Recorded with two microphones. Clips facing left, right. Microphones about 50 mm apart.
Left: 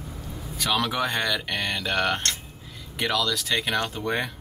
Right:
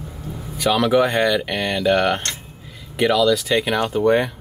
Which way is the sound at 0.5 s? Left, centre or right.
Centre.